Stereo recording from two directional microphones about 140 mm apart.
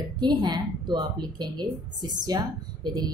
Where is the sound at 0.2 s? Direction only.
30° right (ahead or behind).